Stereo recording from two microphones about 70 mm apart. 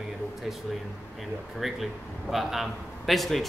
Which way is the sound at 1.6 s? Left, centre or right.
Centre.